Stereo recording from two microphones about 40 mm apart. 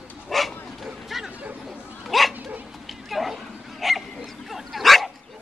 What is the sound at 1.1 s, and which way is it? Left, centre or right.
Chatter, centre.